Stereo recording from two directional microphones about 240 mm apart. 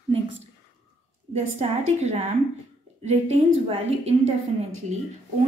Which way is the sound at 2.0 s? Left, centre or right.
Right.